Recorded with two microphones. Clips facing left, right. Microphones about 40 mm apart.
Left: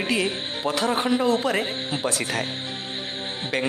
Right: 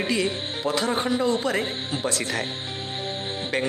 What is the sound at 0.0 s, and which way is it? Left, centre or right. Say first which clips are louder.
Speech: even; centre.